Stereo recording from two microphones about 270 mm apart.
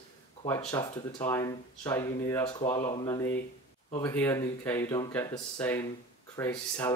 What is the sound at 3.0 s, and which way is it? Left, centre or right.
Speech, centre.